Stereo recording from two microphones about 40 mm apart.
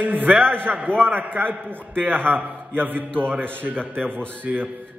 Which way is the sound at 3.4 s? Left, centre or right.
Right.